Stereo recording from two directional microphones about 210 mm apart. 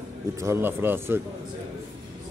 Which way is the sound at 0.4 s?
10° right (ahead or behind).